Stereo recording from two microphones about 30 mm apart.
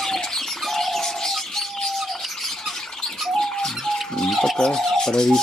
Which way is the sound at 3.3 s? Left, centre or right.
Centre.